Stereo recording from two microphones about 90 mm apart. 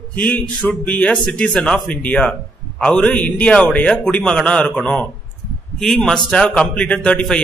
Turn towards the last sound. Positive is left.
turn(degrees=10)  # may be behind; listen again after turning